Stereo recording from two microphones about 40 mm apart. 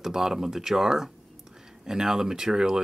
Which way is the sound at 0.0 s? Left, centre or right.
Centre.